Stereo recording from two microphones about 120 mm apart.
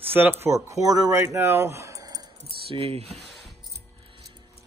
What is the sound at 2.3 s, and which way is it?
Speech, 50° right (ahead or behind).